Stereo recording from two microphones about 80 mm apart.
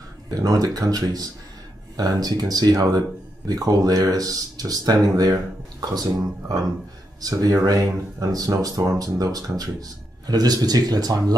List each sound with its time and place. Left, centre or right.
0.3 s speech: right